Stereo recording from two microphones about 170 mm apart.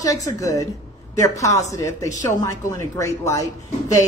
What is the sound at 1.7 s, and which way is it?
A woman's voice, 20° left (ahead or behind).